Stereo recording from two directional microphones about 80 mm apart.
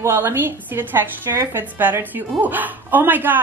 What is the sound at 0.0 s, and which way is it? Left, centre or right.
A woman's voice, right.